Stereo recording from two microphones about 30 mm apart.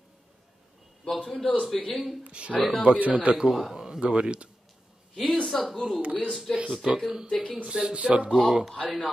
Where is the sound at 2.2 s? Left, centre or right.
Right.